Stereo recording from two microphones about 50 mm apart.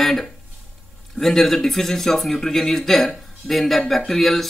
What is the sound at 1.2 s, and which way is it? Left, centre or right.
Speech, centre.